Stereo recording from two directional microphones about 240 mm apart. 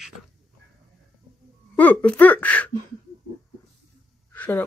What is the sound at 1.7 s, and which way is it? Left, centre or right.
Speech, centre.